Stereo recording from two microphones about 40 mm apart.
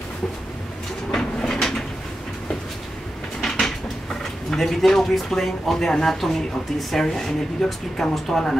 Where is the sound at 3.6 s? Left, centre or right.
Centre.